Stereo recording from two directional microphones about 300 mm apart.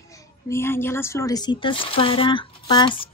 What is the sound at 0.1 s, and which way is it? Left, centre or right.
A woman's voice, centre.